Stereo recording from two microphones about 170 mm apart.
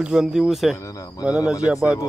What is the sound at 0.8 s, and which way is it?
Speech, 20° left (ahead or behind).